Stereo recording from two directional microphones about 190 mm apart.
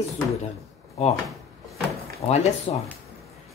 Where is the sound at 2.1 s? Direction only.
35° left (ahead or behind).